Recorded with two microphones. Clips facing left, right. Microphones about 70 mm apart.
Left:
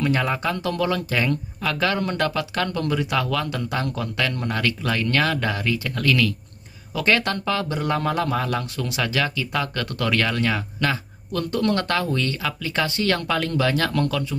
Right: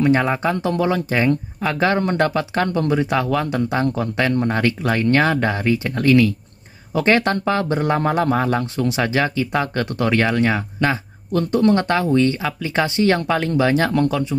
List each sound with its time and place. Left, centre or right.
0.0 s speech: right